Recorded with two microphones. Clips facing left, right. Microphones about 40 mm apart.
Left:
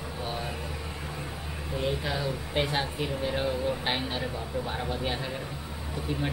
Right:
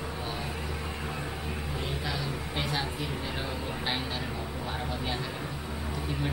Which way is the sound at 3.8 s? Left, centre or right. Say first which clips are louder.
Left 2 dB; centre.